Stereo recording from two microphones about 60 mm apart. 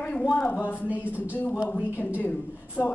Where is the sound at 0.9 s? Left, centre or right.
Right.